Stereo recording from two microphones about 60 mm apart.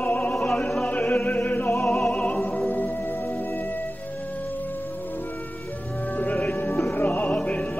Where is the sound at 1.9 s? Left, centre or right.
Centre.